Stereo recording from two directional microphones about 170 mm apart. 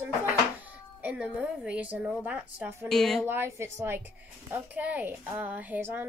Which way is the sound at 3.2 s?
15° right (ahead or behind).